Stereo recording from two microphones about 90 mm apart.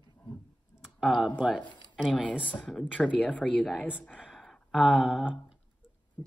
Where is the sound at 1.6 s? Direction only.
60° left (ahead or behind).